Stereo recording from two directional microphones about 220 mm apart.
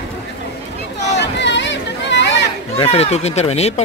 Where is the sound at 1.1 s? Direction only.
50° left (ahead or behind).